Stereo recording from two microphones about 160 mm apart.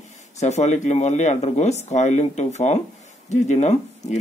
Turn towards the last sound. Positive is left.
turn(degrees=45)  # may be behind; listen again after turning